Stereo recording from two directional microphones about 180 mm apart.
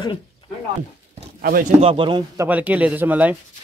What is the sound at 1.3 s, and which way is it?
Speech, 55° right (ahead or behind).